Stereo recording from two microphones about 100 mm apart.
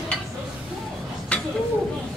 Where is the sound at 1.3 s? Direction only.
10° left (ahead or behind).